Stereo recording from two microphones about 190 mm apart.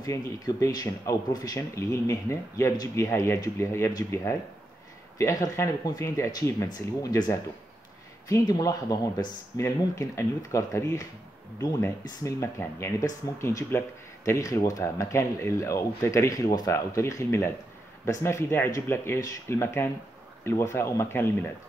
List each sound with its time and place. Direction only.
0.0 s speech: 15° left (ahead or behind)